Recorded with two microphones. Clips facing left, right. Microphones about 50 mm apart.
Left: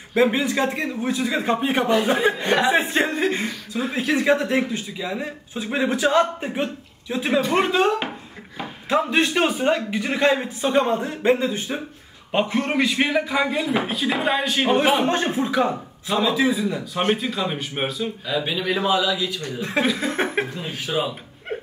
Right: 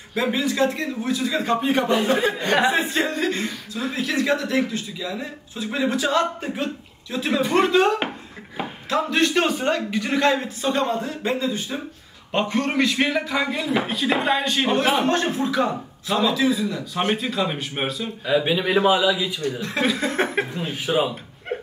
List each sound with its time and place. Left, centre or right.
0.1 s speech: left
2.7 s speech: left
8.8 s speech: centre
10.9 s speech: left
12.3 s speech: centre
15.0 s speech: centre
16.9 s speech: centre
18.2 s a man's voice: centre
19.8 s speech: centre
20.5 s a man's voice: centre